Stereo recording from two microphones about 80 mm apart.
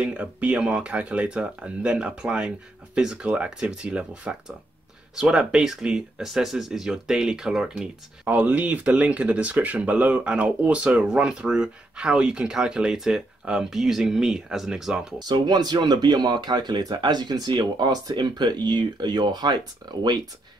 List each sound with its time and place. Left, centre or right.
0.0 s speech: centre
8.3 s speech: centre
15.1 s speech: right